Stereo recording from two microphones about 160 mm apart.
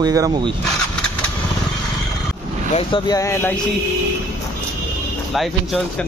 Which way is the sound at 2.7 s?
30° left (ahead or behind).